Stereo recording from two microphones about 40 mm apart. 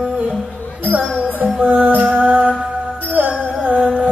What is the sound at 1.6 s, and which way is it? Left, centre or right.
Music, right.